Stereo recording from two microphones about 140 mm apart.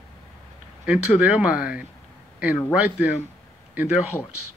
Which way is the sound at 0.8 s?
10° right (ahead or behind).